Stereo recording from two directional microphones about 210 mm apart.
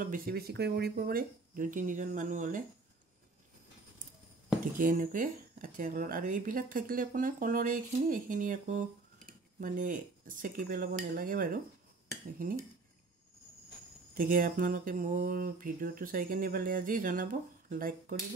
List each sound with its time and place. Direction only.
0.0 s speech: 45° right (ahead or behind)
4.7 s speech: 40° right (ahead or behind)
14.1 s speech: 45° right (ahead or behind)